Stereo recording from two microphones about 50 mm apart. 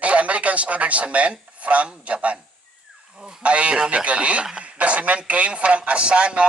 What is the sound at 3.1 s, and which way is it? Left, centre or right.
Speech, centre.